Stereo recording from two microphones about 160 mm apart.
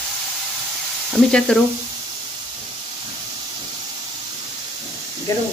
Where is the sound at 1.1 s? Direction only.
5° left (ahead or behind).